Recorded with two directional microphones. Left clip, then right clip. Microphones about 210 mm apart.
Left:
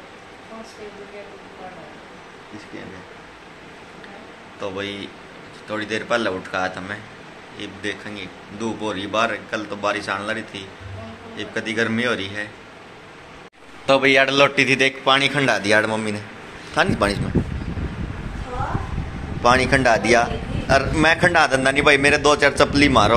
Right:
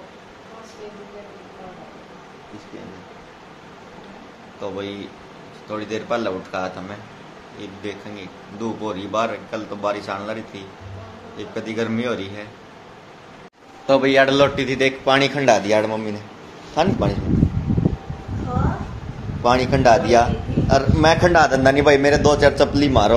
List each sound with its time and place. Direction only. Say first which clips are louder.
4.6 s a man's voice: left 1 dB; 5° right (ahead or behind)
13.8 s a man's voice: even; 5° left (ahead or behind)
19.4 s a man's voice: even; 5° right (ahead or behind)